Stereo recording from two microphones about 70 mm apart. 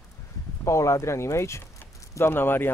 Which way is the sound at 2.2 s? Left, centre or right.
Left.